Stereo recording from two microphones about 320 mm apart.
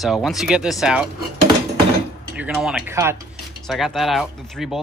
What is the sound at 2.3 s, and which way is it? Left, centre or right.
Speech, centre.